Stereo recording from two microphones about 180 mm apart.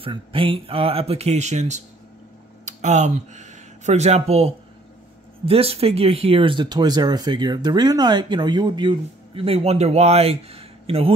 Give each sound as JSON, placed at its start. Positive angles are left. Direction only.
{"t": 0.0, "sound": "speech", "side_deg": -30}